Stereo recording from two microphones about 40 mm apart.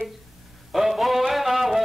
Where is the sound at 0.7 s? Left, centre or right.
Centre.